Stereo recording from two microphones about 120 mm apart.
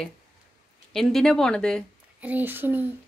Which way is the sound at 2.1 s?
15° right (ahead or behind).